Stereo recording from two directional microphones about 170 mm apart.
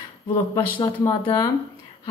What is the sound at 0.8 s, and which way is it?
Speech, 15° left (ahead or behind).